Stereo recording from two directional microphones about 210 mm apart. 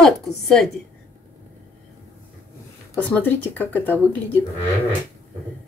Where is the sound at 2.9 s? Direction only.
5° left (ahead or behind).